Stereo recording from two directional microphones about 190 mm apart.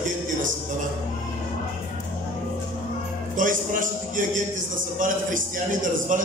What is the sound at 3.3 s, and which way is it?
A man's voice, 45° right (ahead or behind).